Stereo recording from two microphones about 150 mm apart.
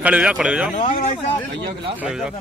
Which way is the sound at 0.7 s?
55° left (ahead or behind).